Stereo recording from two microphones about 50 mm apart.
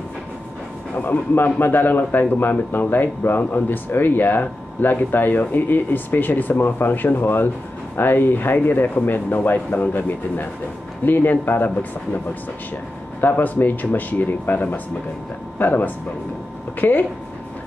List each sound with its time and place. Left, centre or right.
0.9 s a man's voice: left
13.2 s a man's voice: left